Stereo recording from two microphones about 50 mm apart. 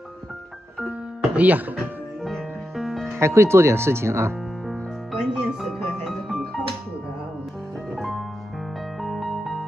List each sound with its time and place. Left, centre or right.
0.8 s music: right
1.8 s music: centre
3.2 s speech: right
4.6 s music: centre
7.9 s music: centre